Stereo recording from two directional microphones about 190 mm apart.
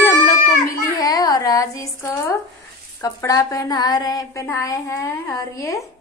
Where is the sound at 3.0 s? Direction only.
20° left (ahead or behind).